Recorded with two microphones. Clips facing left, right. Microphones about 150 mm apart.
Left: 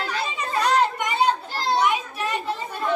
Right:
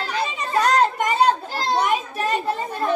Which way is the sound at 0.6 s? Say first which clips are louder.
Right 3 dB; 45° right (ahead or behind).